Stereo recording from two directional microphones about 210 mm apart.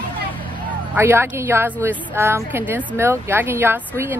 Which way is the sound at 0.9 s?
10° right (ahead or behind).